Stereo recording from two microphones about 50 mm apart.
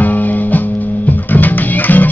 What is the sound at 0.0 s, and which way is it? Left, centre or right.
Music, left.